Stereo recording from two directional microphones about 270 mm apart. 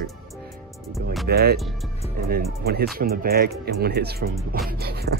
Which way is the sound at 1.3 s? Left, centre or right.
Right.